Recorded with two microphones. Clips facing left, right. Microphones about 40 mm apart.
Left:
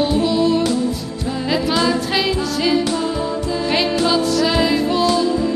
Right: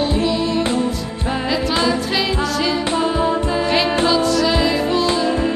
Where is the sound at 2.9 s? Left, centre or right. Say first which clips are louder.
Right 3 dB; right.